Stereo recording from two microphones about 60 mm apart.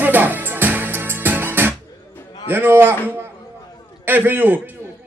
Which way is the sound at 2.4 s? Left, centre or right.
Right.